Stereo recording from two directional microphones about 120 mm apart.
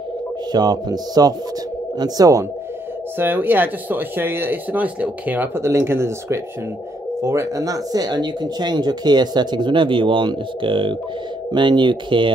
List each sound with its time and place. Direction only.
0.5 s speech: 35° right (ahead or behind)
3.2 s speech: 15° right (ahead or behind); by 12.3 s 40° right (ahead or behind)